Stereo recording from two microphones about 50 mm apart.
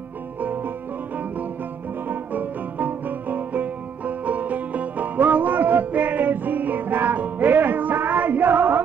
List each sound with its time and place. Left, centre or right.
0.4 s music: right